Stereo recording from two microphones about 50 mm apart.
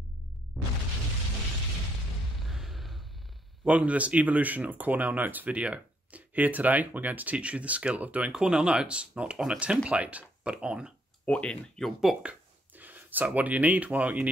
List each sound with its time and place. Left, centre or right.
0.5 s boom: centre
2.4 s a sound: centre
3.6 s speech: right
8.3 s speech: centre
11.2 s speech: centre
11.8 s speech: centre
12.7 s speech: right